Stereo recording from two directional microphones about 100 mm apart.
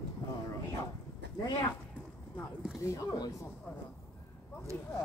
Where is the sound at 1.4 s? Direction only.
45° left (ahead or behind).